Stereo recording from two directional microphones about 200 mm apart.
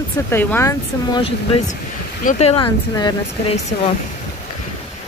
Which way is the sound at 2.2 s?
30° left (ahead or behind).